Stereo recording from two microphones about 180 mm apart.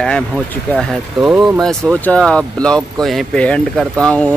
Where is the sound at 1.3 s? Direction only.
10° right (ahead or behind).